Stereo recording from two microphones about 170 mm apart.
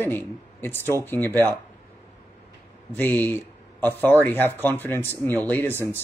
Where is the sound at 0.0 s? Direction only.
10° left (ahead or behind).